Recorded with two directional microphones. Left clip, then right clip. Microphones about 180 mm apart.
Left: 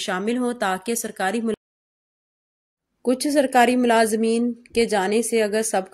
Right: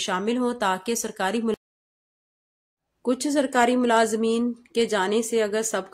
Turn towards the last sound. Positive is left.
turn(degrees=15)  # may be behind; listen again after turning